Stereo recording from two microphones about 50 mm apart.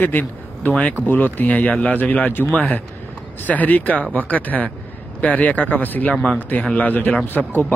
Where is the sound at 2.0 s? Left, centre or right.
Left.